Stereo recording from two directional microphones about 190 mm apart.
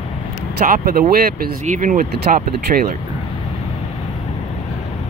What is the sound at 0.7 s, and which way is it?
Speech, 50° right (ahead or behind).